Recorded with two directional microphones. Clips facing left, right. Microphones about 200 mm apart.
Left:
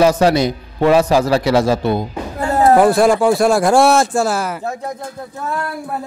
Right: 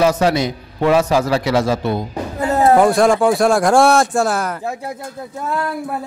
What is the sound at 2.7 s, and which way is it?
A man's voice, centre (ahead or behind).